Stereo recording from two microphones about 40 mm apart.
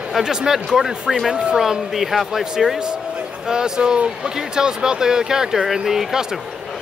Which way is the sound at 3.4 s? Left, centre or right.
Centre.